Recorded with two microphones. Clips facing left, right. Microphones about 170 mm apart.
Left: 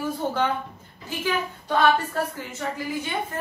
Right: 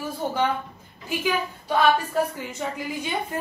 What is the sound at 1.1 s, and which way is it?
A woman's voice, 10° right (ahead or behind).